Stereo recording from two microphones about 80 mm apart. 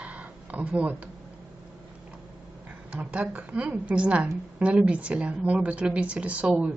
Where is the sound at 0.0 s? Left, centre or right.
Centre.